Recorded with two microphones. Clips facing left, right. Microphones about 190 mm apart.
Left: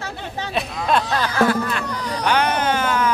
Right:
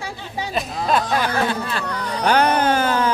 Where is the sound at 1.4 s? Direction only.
30° right (ahead or behind).